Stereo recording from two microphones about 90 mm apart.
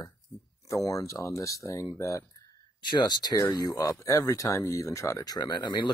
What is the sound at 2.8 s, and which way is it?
Speech, 55° left (ahead or behind).